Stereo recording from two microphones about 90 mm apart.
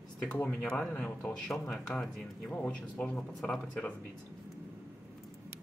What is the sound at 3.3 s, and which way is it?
Speech, 5° left (ahead or behind).